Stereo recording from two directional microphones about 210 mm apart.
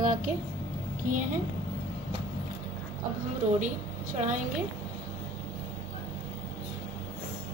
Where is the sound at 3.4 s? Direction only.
35° right (ahead or behind).